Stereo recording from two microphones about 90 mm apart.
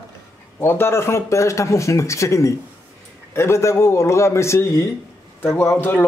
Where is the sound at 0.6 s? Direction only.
30° left (ahead or behind).